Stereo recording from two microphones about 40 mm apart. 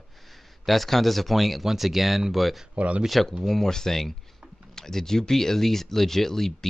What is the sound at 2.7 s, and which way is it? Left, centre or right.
Speech, right.